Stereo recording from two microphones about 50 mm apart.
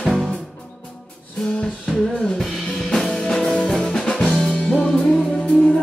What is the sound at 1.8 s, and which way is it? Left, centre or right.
Music, centre.